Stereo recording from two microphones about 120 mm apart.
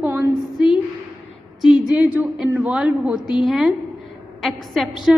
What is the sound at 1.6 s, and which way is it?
A woman's voice, 5° right (ahead or behind).